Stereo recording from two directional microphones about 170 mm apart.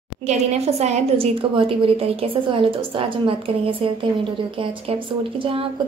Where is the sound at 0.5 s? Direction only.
40° right (ahead or behind).